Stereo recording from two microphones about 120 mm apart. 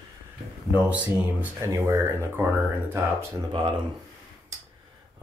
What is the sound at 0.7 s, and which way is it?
Speech, 10° right (ahead or behind).